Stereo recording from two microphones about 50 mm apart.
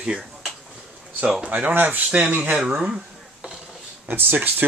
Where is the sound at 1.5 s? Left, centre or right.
Right.